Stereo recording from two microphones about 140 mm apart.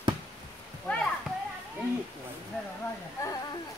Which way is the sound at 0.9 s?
10° left (ahead or behind).